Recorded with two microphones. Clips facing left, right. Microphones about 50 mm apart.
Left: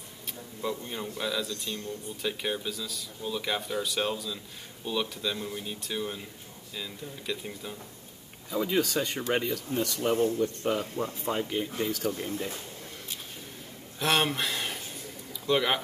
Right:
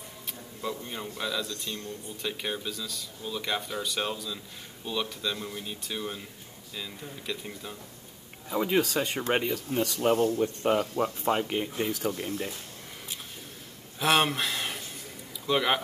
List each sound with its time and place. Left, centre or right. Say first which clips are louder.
0.6 s speech: left 1 dB; centre
8.5 s speech: right 1 dB; right
11.7 s speech: even; right
13.9 s speech: right 2 dB; centre